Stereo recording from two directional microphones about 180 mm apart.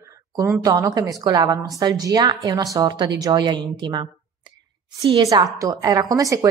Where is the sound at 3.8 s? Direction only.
25° right (ahead or behind).